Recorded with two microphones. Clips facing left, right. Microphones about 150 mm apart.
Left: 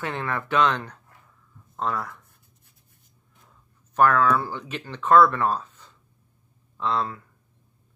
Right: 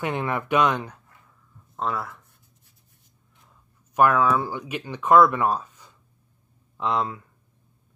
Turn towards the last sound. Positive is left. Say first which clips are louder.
# right 1 dB
turn(degrees=-15)  # may be behind; listen again after turning